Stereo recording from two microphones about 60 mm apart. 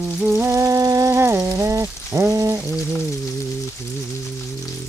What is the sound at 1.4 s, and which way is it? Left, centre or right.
Rain on surface, right.